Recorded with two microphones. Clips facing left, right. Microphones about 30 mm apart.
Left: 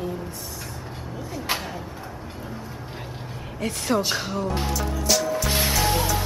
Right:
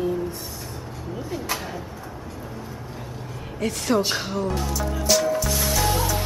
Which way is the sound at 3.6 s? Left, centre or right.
Centre.